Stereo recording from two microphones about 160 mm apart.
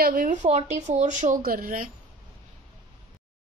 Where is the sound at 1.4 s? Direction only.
65° right (ahead or behind).